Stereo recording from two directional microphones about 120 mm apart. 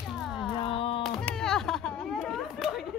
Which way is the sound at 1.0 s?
5° left (ahead or behind).